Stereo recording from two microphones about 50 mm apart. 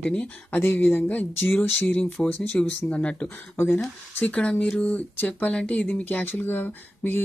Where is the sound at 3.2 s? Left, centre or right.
Left.